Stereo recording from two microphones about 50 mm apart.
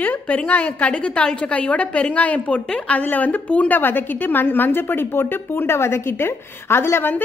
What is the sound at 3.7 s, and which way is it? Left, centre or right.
A woman's voice, left.